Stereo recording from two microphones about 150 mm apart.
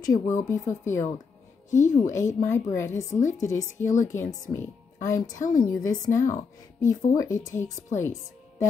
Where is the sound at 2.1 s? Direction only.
20° left (ahead or behind).